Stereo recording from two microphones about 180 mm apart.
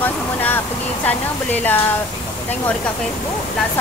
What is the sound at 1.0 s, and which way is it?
Speech, 10° left (ahead or behind).